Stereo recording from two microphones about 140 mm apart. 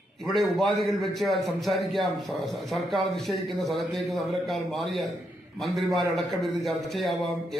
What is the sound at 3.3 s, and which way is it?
A man's voice, centre (ahead or behind).